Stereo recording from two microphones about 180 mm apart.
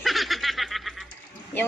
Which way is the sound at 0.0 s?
Centre (ahead or behind).